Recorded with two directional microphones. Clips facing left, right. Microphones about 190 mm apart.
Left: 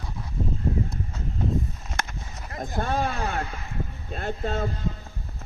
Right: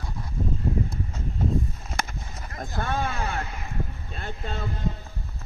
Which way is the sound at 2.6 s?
20° left (ahead or behind).